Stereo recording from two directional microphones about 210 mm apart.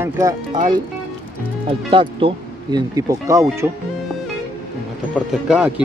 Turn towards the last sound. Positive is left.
turn(degrees=-5)  # may be behind; listen again after turning